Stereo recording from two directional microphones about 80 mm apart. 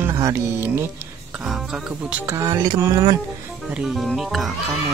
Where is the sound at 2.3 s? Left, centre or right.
Right.